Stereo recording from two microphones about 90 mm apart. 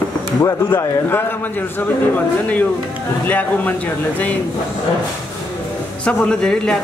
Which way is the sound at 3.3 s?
20° left (ahead or behind).